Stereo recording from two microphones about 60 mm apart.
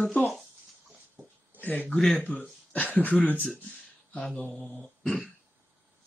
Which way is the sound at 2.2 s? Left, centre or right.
Left.